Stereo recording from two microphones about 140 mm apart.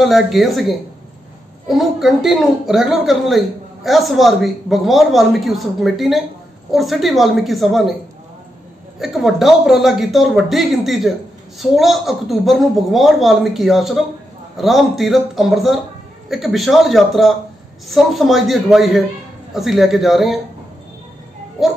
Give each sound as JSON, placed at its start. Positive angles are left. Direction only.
{"t": 0.0, "sound": "a woman's voice", "side_deg": 0}
{"t": 9.0, "sound": "a woman's voice", "side_deg": 0}